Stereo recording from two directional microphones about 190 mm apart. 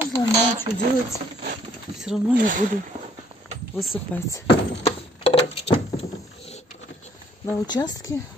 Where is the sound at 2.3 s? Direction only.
45° right (ahead or behind).